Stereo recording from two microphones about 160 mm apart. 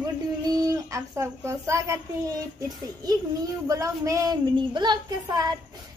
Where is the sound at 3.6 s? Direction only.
20° right (ahead or behind).